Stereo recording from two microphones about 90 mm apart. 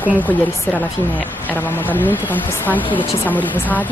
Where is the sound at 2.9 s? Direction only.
70° left (ahead or behind).